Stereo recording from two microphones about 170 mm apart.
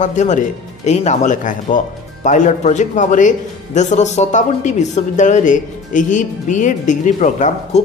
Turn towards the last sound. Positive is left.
turn(degrees=45)  # may be behind; listen again after turning